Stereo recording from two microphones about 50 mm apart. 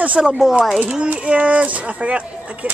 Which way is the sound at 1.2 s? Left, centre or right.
Right.